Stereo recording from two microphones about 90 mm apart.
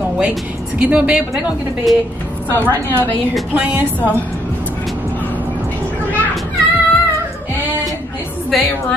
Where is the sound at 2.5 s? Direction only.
20° left (ahead or behind).